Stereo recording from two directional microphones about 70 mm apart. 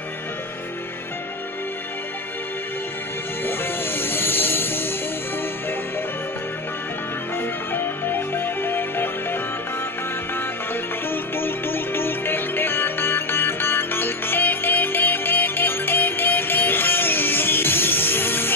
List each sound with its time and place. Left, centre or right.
3.4 s music: left
7.3 s music: left
11.1 s music: left